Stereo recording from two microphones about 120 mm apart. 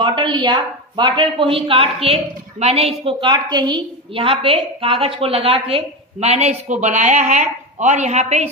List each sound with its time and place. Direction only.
0.0 s a woman's voice: 40° right (ahead or behind); by 8.5 s 65° right (ahead or behind)